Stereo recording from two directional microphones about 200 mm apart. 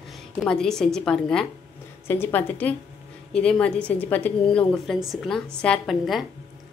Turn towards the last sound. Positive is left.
turn(degrees=0)  # may be behind; listen again after turning